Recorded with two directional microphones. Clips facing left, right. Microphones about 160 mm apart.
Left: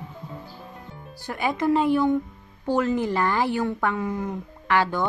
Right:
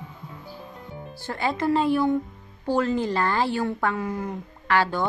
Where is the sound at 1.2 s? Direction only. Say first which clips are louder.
Left 1 dB; 15° left (ahead or behind).